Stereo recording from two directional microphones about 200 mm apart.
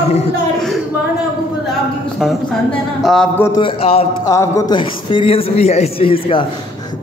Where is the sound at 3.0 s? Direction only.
Centre (ahead or behind).